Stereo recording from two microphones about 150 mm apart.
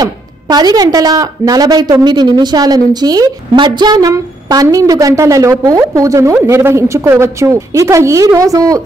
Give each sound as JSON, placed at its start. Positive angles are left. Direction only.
{"t": 0.0, "sound": "a woman's voice", "side_deg": -25}